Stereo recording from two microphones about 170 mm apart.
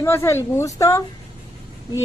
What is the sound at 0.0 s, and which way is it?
A woman's voice, 15° left (ahead or behind).